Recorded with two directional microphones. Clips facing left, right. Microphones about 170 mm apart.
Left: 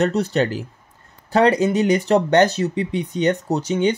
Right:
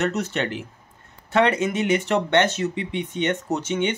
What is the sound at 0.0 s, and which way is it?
Speech, 35° left (ahead or behind).